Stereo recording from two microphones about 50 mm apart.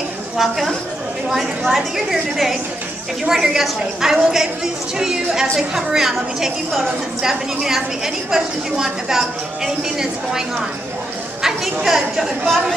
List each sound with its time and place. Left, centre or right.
0.4 s a woman's voice: centre
11.4 s a woman's voice: centre